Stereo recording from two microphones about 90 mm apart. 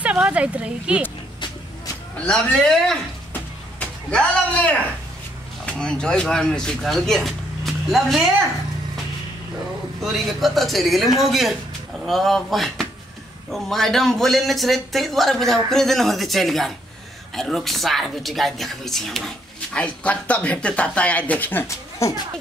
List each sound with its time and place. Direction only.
0.0 s speech: 15° right (ahead or behind)
2.1 s a woman's voice: 10° left (ahead or behind)
4.1 s a woman's voice: 15° left (ahead or behind)
10.0 s a man's voice: centre (ahead or behind); by 21.6 s 20° left (ahead or behind)
21.6 s speech: 35° left (ahead or behind)